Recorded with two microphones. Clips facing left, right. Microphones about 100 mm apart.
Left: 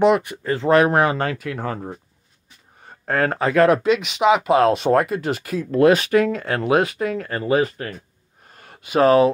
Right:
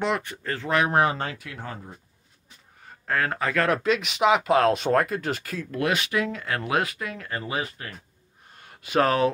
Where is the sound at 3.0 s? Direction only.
35° left (ahead or behind).